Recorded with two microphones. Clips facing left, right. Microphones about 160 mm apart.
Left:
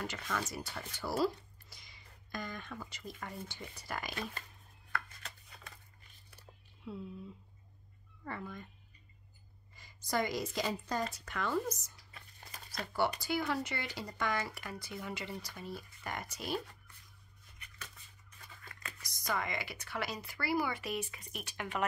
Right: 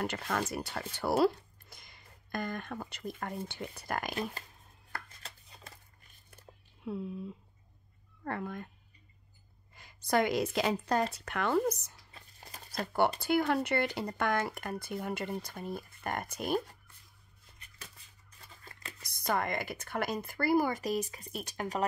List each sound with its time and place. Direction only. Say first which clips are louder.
0.0 s speech: right 5 dB; 60° right (ahead or behind)
4.9 s chopping: left 3 dB; 35° right (ahead or behind)
6.3 s a sound: right 4 dB; 55° right (ahead or behind)
8.2 s speech: right 6 dB; 55° right (ahead or behind)
9.8 s a woman's voice: right 6 dB; 60° right (ahead or behind)
12.1 s a sound: right 2 dB; 35° right (ahead or behind)
13.2 s speech: right 6 dB; 55° right (ahead or behind)
17.6 s a sound: left 1 dB; 30° right (ahead or behind)
18.4 s scissors: right 1 dB; 30° right (ahead or behind)
19.0 s speech: right 5 dB; 60° right (ahead or behind); by 21.8 s 40° right (ahead or behind)